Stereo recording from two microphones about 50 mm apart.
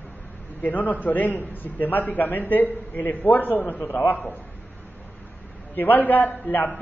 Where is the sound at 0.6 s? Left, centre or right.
Left.